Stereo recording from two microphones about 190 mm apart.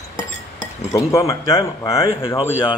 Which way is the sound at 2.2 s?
25° left (ahead or behind).